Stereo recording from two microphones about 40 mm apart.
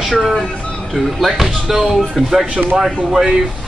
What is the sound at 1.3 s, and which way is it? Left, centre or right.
Speech, centre.